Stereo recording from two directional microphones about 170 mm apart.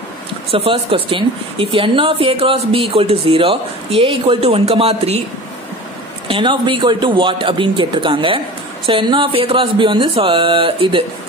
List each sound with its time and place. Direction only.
0.5 s a woman's voice: 35° right (ahead or behind)
6.2 s a woman's voice: 30° right (ahead or behind)